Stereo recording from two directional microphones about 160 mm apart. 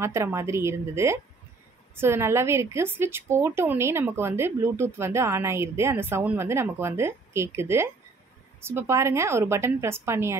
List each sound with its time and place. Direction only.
0.0 s a woman's voice: 15° right (ahead or behind)